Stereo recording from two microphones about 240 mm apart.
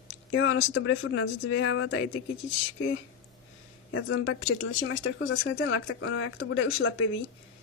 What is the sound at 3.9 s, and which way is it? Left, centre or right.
Speech, left.